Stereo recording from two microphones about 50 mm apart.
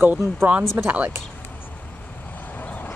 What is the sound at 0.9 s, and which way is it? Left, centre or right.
Speech, right.